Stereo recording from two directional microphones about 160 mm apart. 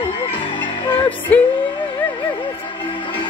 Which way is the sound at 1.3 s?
10° left (ahead or behind).